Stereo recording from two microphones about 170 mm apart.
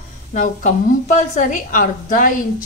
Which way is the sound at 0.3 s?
45° left (ahead or behind).